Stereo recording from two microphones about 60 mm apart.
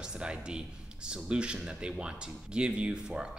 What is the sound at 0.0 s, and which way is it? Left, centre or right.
Speech, centre.